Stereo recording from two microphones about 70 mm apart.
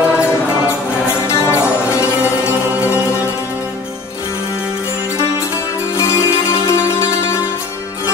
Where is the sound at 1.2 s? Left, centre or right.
Left.